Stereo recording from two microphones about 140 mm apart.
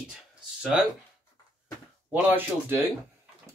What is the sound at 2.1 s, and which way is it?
Speech, 15° right (ahead or behind).